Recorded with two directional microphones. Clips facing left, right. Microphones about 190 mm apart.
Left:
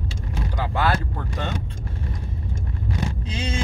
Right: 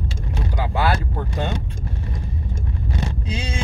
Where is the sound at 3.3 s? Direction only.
10° right (ahead or behind).